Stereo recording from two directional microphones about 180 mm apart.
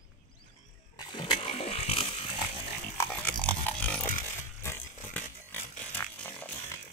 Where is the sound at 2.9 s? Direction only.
10° left (ahead or behind).